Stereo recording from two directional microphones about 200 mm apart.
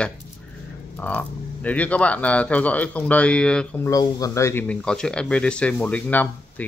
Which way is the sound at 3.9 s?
20° left (ahead or behind).